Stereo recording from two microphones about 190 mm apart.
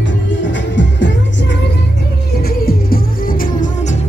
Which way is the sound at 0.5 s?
70° left (ahead or behind).